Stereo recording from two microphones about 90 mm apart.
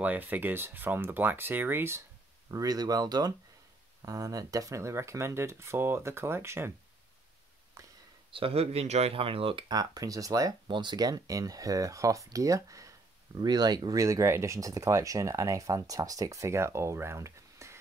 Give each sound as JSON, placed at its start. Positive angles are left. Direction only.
{"t": 0.0, "sound": "speech", "side_deg": -20}
{"t": 2.5, "sound": "speech", "side_deg": -45}
{"t": 7.8, "sound": "whispering", "side_deg": -35}
{"t": 8.3, "sound": "a man's voice", "side_deg": -85}
{"t": 9.7, "sound": "speech", "side_deg": -45}
{"t": 10.7, "sound": "speech", "side_deg": -55}
{"t": 13.4, "sound": "speech", "side_deg": -50}